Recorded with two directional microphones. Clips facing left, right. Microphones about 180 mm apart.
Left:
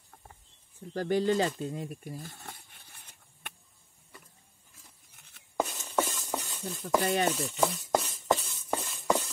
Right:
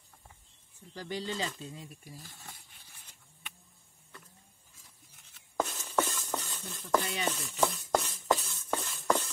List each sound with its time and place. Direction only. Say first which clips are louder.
0.9 s snake: left 10 dB; 50° left (ahead or behind)
5.6 s stir: left 1 dB; centre (ahead or behind)
7.0 s chopping: left 9 dB; 50° left (ahead or behind)
7.2 s chopping: left 3 dB; 5° left (ahead or behind)
8.5 s a sound: left 1 dB; 10° left (ahead or behind)